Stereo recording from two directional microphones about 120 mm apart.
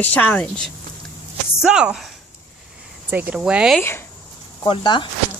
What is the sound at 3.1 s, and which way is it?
Speech, 10° right (ahead or behind).